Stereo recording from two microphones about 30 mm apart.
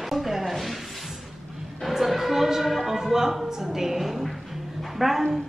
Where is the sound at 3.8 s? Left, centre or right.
Centre.